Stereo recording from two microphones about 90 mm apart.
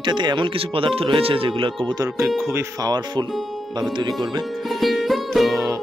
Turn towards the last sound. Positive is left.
turn(degrees=0)  # may be behind; listen again after turning